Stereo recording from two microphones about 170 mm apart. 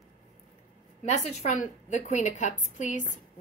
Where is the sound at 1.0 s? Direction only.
40° left (ahead or behind).